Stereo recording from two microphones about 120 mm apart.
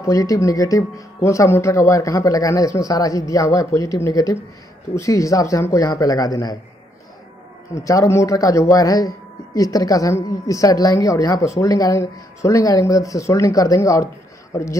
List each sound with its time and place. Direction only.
0.0 s a man's voice: 25° left (ahead or behind)
7.7 s a man's voice: 25° left (ahead or behind)